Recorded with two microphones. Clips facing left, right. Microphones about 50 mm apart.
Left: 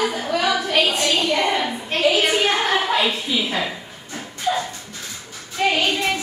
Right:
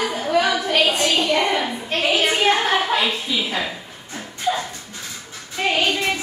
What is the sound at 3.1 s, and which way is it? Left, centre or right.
Speech, centre.